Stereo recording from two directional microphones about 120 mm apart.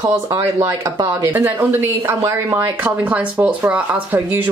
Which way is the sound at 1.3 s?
15° right (ahead or behind).